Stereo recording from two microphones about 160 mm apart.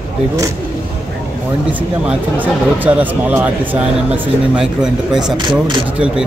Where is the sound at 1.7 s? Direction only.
10° right (ahead or behind).